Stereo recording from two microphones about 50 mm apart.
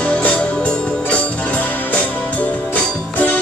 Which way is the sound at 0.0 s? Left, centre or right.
Left.